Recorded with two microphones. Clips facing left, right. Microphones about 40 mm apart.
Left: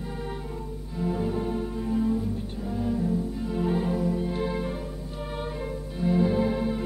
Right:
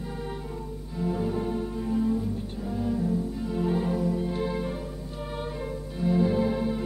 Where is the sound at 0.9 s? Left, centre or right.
Centre.